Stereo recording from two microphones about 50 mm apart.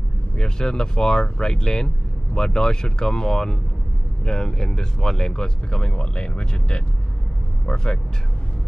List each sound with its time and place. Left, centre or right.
0.4 s speech: centre